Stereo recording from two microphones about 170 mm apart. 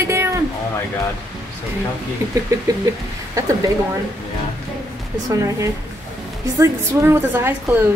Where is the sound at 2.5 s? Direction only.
20° right (ahead or behind).